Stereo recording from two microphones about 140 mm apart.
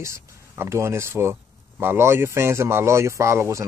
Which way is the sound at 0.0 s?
20° right (ahead or behind).